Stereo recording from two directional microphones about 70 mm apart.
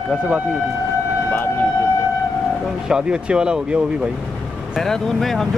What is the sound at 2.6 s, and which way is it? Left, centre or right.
Speech, centre.